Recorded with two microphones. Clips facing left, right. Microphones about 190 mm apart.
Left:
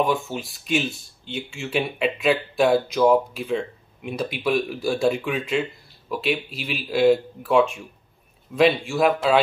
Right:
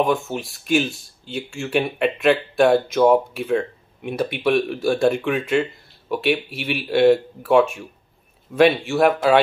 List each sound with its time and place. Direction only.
0.0 s speech: centre (ahead or behind)
6.5 s speech: 65° right (ahead or behind)
6.9 s speech: centre (ahead or behind)
9.0 s speech: 60° right (ahead or behind)